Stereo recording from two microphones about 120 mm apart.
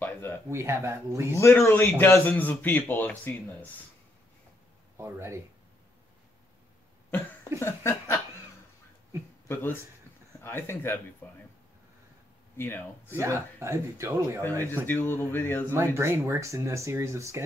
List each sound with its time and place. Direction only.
0.0 s a sound: 20° left (ahead or behind)
0.5 s speech: 20° right (ahead or behind)
1.3 s a man's voice: 20° left (ahead or behind)
4.9 s speech: 20° right (ahead or behind)
7.5 s chuckle: 20° left (ahead or behind)
9.5 s chuckle: 20° left (ahead or behind)
11.2 s a man's voice: 15° left (ahead or behind)
12.5 s speech: 20° left (ahead or behind)
13.2 s speech: 20° right (ahead or behind)
14.9 s a man's voice: 15° left (ahead or behind)
15.7 s speech: 20° right (ahead or behind)